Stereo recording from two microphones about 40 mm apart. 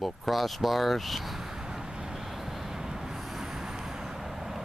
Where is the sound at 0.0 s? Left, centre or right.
Centre.